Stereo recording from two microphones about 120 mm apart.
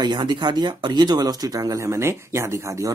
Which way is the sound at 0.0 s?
40° right (ahead or behind).